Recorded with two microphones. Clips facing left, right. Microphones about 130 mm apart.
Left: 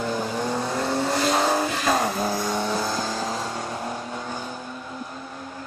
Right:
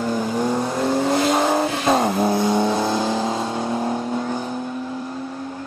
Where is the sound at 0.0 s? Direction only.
15° right (ahead or behind).